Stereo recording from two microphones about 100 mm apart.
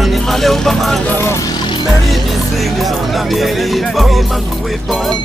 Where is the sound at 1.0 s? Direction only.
20° left (ahead or behind).